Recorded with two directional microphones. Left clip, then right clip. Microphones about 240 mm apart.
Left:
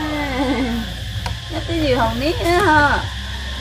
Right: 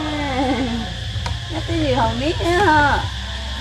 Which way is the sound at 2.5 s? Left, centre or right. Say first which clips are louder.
Left 1 dB; centre.